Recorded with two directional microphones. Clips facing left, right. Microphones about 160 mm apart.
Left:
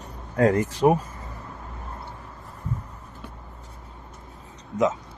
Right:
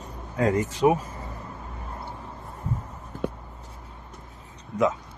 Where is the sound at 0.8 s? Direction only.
30° left (ahead or behind).